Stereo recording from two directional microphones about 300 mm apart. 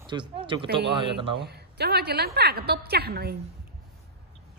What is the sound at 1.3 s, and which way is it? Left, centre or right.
A woman's voice, right.